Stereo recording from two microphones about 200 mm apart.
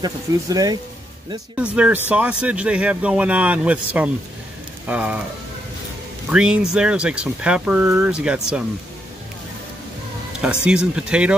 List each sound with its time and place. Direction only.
0.0 s speech: 20° right (ahead or behind)
1.6 s speech: 5° right (ahead or behind)
6.3 s speech: 5° right (ahead or behind)
10.4 s speech: 5° right (ahead or behind)